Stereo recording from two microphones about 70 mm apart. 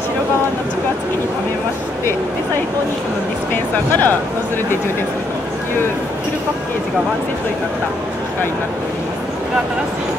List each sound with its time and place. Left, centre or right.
3.7 s speech: left